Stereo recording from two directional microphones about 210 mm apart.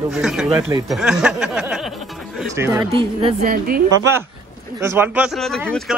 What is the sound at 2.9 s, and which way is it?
Speech, 25° right (ahead or behind).